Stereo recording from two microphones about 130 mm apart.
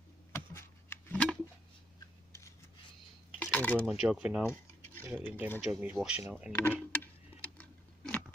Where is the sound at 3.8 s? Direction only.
5° right (ahead or behind).